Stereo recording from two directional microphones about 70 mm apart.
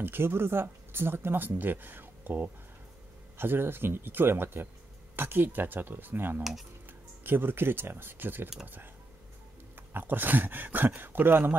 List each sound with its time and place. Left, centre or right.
0.0 s speech: right